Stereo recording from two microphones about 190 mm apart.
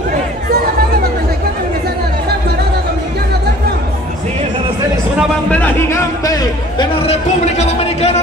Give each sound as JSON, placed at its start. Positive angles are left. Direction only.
{"t": 5.5, "sound": "speech", "side_deg": 10}
{"t": 7.1, "sound": "speech", "side_deg": 35}